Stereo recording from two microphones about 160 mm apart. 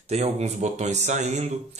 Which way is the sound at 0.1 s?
45° right (ahead or behind).